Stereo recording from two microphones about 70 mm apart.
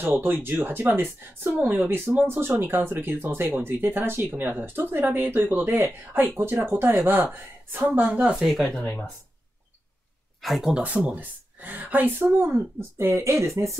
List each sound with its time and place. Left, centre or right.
0.0 s speech: right
8.5 s speech: centre
10.4 s speech: centre
10.7 s speech: centre; by 13.5 s right